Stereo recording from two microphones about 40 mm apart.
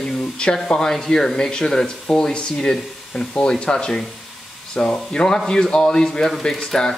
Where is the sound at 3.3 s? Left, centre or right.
Left.